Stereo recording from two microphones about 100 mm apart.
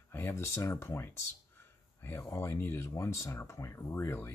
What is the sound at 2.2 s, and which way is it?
Speech, 25° left (ahead or behind).